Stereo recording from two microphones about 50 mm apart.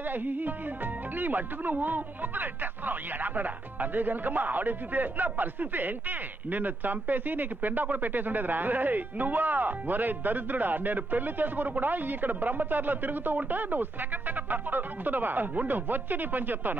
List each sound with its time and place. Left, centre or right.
0.0 s music: right
1.1 s speech: right